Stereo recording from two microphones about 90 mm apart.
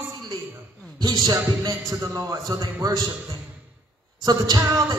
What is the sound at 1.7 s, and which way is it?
A man's voice, 40° right (ahead or behind).